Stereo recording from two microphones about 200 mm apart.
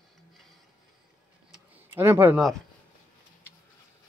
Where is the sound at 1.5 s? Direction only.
10° right (ahead or behind).